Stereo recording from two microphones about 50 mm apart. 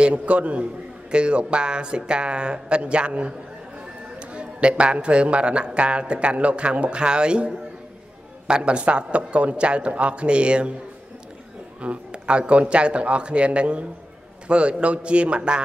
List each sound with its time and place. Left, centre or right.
0.0 s a man's voice: right
11.8 s a man's voice: right